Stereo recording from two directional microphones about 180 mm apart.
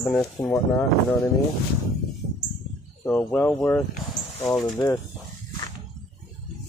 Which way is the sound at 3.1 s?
10° left (ahead or behind).